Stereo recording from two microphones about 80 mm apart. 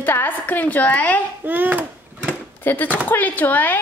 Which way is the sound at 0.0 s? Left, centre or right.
Left.